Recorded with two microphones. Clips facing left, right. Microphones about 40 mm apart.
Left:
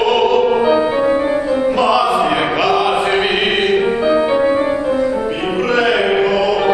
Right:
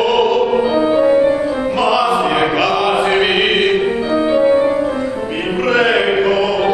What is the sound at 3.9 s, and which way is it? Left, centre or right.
Music, centre.